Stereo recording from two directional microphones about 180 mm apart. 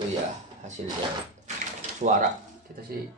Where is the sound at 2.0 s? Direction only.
45° right (ahead or behind).